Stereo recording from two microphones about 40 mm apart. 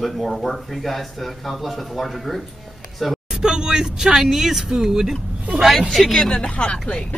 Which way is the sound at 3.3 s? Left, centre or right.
Centre.